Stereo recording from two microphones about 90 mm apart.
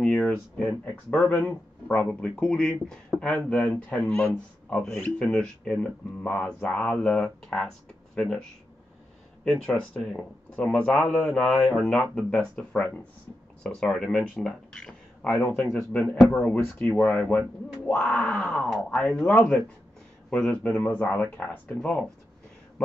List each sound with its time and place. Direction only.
0.0 s speech: 15° left (ahead or behind)
16.8 s speech: 10° left (ahead or behind)